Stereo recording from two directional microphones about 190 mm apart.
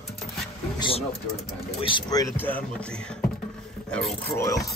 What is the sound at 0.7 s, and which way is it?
Speech, 25° left (ahead or behind).